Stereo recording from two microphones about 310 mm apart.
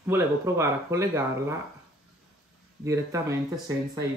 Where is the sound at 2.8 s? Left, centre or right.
Centre.